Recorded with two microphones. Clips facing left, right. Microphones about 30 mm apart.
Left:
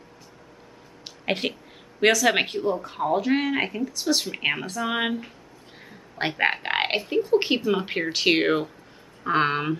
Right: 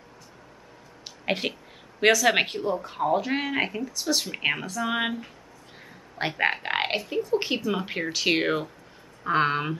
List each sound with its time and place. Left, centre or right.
1.0 s speech: centre